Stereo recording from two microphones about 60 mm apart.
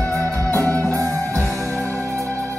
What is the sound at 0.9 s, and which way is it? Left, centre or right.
Music, right.